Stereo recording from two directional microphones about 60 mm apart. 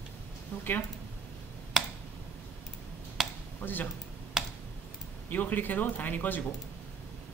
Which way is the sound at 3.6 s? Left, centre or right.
Left.